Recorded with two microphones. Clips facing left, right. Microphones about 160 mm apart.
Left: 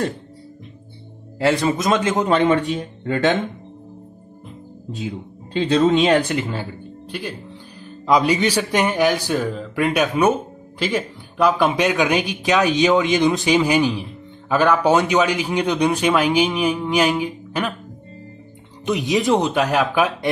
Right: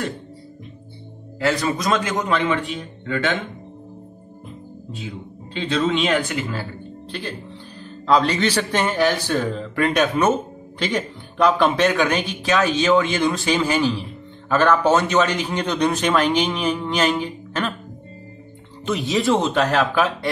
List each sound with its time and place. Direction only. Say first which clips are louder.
1.4 s a man's voice: left 3 dB; 25° left (ahead or behind)
4.9 s a man's voice: left 5 dB; 40° left (ahead or behind)
6.5 s a man's voice: left 1 dB; 15° left (ahead or behind)
18.9 s a man's voice: left 2 dB; 15° left (ahead or behind)